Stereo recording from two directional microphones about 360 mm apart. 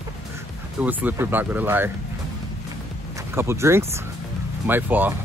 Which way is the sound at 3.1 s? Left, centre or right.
Centre.